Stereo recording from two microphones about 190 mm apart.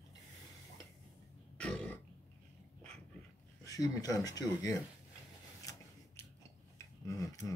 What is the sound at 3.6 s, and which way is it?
Speech, 20° left (ahead or behind).